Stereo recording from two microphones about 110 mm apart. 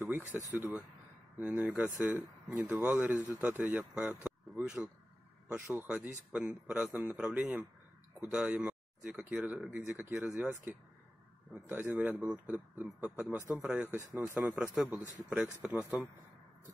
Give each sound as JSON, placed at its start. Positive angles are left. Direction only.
{"t": 0.3, "sound": "speech", "side_deg": -10}
{"t": 4.2, "sound": "a sound", "side_deg": -10}
{"t": 5.5, "sound": "a man's voice", "side_deg": -10}